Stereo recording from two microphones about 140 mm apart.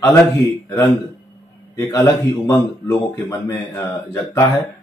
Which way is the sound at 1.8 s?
20° left (ahead or behind).